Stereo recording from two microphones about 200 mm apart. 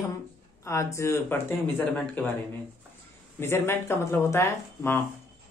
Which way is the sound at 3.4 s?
10° left (ahead or behind).